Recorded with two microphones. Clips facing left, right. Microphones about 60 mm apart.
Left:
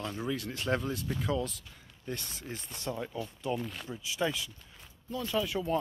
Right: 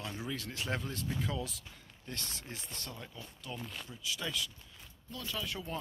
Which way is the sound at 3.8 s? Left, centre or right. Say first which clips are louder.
Left 7 dB; left.